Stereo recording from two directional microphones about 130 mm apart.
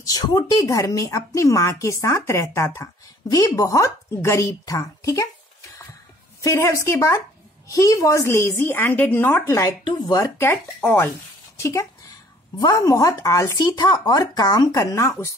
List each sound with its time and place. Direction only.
0.0 s a woman's voice: 30° left (ahead or behind)
10.4 s speech: 15° left (ahead or behind)